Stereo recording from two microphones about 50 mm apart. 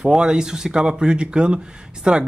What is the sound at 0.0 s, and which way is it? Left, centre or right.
Speech, centre.